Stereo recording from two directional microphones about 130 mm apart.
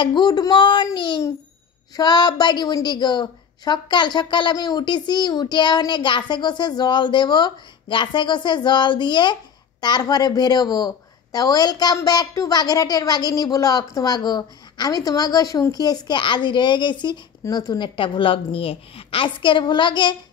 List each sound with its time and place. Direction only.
0.0 s a woman's voice: 35° left (ahead or behind)